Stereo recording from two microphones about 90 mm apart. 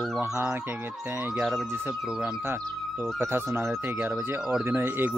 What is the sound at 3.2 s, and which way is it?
Speech, 25° right (ahead or behind).